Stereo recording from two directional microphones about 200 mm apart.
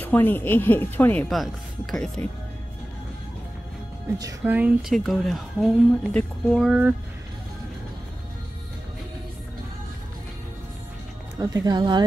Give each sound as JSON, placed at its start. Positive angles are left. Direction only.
{"t": 0.0, "sound": "speech", "side_deg": 10}
{"t": 4.2, "sound": "a woman's voice", "side_deg": -15}
{"t": 11.3, "sound": "speech", "side_deg": -20}